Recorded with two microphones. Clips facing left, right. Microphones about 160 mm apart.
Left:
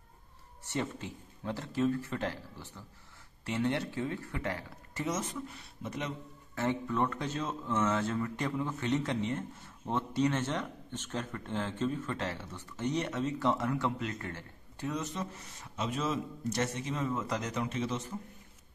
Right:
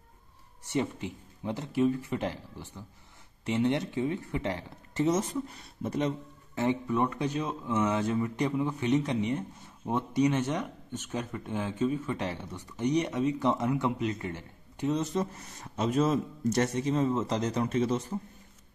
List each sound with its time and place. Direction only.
0.7 s speech: 15° right (ahead or behind); by 6.1 s 35° right (ahead or behind)
6.5 s speech: 15° right (ahead or behind)
15.0 s a man's voice: 40° right (ahead or behind)